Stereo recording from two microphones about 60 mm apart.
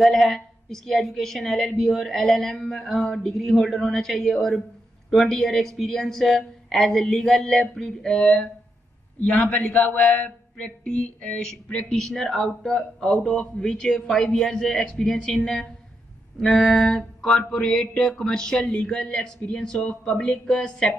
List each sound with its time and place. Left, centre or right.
0.0 s a woman's voice: centre
9.2 s a man's voice: left